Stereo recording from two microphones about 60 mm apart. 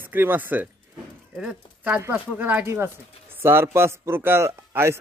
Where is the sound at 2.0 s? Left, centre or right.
Right.